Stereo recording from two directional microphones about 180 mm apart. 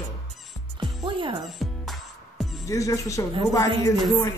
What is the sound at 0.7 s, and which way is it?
Music, 25° right (ahead or behind).